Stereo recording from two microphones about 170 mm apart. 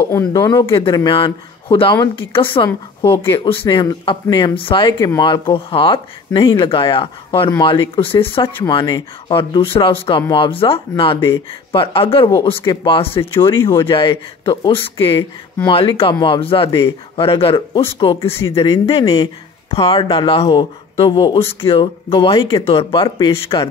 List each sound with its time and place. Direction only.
0.3 s speech: 25° left (ahead or behind)
11.1 s speech: 15° left (ahead or behind)
11.7 s speech: 30° left (ahead or behind)